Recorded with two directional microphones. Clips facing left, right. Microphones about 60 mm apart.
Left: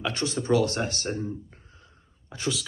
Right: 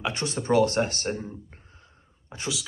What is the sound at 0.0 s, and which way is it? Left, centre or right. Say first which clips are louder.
Speech: left 1 dB; right.